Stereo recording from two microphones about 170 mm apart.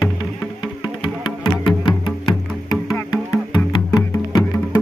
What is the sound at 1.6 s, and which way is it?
Music, 30° left (ahead or behind).